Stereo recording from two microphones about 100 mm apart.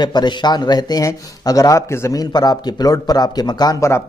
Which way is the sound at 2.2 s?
45° left (ahead or behind).